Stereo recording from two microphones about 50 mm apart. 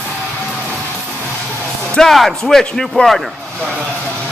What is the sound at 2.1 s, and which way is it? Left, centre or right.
Speech, centre.